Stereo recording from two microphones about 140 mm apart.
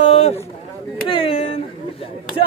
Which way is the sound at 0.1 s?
50° left (ahead or behind).